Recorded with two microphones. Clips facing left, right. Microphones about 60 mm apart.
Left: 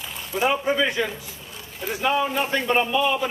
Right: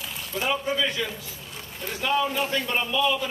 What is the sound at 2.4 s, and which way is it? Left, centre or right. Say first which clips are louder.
Speech: left 4 dB; left.